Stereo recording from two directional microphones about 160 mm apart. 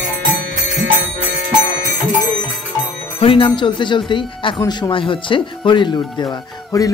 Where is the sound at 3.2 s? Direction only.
35° left (ahead or behind).